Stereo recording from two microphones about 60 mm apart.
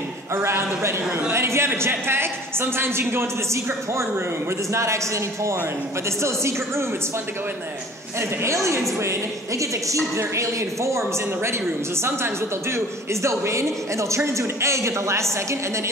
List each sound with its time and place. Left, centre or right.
0.3 s a woman's voice: right
4.7 s a woman's voice: right
8.2 s a woman's voice: right
12.7 s a woman's voice: right